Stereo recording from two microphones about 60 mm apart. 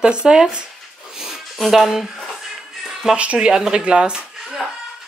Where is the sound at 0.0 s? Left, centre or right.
Centre.